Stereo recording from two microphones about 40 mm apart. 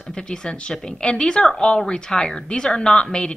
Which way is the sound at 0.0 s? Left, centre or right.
Centre.